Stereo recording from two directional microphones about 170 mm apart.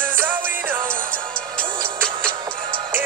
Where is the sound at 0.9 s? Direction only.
55° right (ahead or behind).